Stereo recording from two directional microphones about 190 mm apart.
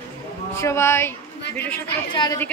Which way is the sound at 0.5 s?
15° left (ahead or behind).